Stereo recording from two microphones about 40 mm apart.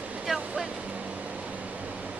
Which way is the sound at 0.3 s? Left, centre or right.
Centre.